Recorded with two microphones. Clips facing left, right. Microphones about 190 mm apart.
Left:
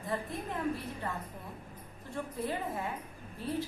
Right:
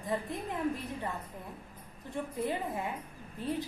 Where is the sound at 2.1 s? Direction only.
15° right (ahead or behind).